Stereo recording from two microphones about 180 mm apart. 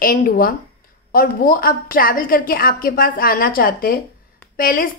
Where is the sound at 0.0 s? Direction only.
55° left (ahead or behind).